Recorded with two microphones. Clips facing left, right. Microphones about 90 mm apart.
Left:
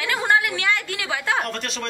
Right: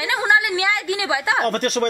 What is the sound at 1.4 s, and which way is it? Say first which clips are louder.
Speech: right 8 dB; 50° right (ahead or behind).